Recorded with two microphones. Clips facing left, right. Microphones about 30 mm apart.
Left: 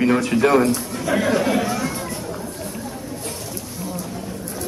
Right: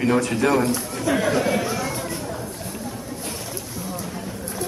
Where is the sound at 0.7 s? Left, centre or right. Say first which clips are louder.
Left 1 dB; centre.